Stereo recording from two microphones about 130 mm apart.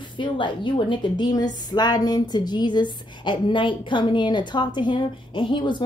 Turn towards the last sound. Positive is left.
turn(degrees=40)  # may be behind; listen again after turning